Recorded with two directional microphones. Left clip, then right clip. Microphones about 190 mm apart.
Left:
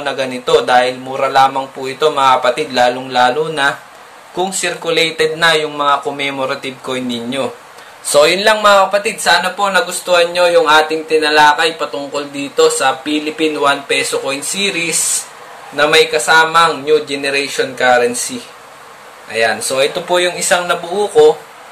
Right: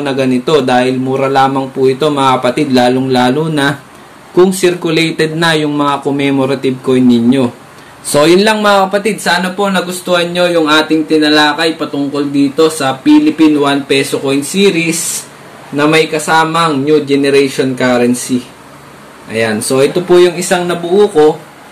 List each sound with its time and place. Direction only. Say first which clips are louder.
0.0 s speech: right 5 dB; 5° right (ahead or behind)
19.3 s speech: right 2 dB; 5° right (ahead or behind)